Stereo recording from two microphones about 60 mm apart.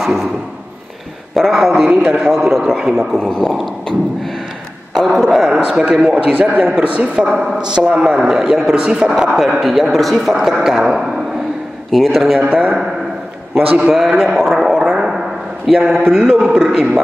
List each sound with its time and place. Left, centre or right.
0.0 s a sound: centre
1.3 s a man's voice: centre
3.2 s speech: centre
4.9 s a sound: centre
5.8 s speech: centre
7.3 s a man's voice: centre
9.4 s a man's voice: centre
12.4 s a man's voice: right
13.6 s a man's voice: centre
15.0 s a sound: centre
16.3 s a man's voice: centre